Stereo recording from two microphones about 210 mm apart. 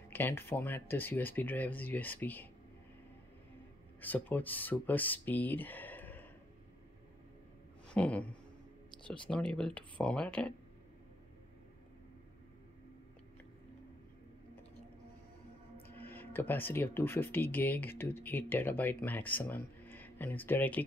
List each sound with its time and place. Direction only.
0.1 s speech: 10° left (ahead or behind)
4.0 s speech: 10° left (ahead or behind)
7.9 s speech: 5° left (ahead or behind)
9.3 s speech: 5° left (ahead or behind)
16.0 s speech: 10° left (ahead or behind)